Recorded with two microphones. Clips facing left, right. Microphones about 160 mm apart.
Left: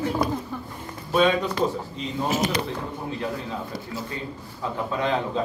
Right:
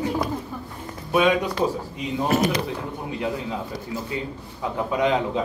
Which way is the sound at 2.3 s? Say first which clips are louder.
Right 5 dB; 60° right (ahead or behind).